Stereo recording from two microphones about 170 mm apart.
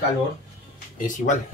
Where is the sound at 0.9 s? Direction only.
50° left (ahead or behind).